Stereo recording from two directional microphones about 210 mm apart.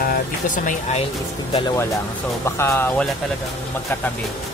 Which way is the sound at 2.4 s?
10° left (ahead or behind).